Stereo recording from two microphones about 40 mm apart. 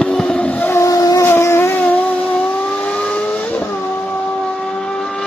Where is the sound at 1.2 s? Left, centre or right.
Left.